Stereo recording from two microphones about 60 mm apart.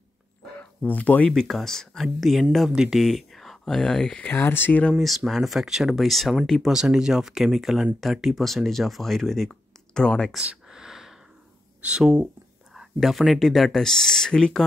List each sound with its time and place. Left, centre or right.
0.8 s speech: left
1.3 s speech: centre
3.0 s speech: centre
4.3 s speech: left
5.0 s speech: centre
6.7 s speech: centre
10.4 s a sound: centre
11.8 s speech: centre
12.7 s speech: centre